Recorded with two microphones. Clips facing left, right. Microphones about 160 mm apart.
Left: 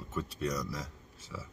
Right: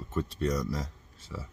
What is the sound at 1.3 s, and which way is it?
Speech, 15° right (ahead or behind).